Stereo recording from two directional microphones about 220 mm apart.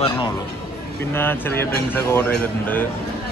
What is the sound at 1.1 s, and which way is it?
Speech, 10° left (ahead or behind).